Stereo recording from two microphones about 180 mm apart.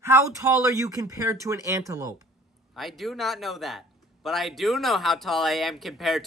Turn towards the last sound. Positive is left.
turn(degrees=0)  # may be behind; listen again after turning